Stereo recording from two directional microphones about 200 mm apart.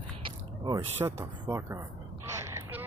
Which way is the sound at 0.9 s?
10° right (ahead or behind).